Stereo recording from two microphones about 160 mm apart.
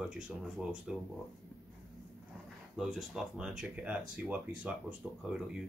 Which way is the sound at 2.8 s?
Centre (ahead or behind).